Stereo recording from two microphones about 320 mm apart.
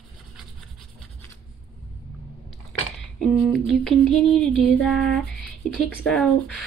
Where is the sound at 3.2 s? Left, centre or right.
Centre.